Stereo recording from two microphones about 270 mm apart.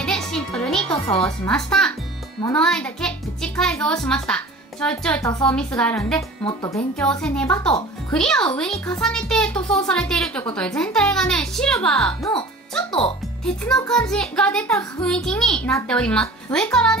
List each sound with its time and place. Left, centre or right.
0.0 s music: centre
1.0 s speech: left
1.4 s speech: centre
6.4 s speech: centre
7.0 s speech: centre
13.7 s speech: centre